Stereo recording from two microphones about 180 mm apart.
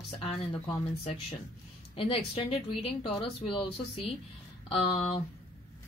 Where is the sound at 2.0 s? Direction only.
30° left (ahead or behind).